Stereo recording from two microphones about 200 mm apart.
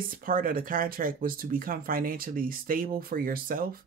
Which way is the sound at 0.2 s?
45° right (ahead or behind).